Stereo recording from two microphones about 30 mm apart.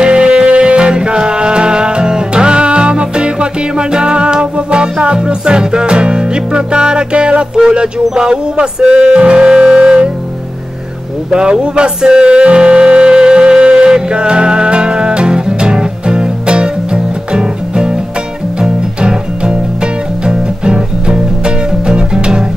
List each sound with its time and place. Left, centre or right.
0.0 s music: right
7.5 s a sound: right
8.1 s speech: right
8.7 s music: right
11.2 s music: right